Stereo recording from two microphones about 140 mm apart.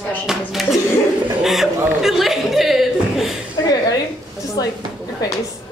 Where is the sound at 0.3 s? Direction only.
Centre (ahead or behind).